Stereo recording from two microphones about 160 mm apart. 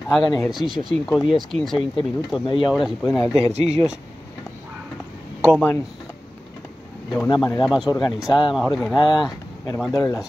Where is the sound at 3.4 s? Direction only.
40° right (ahead or behind).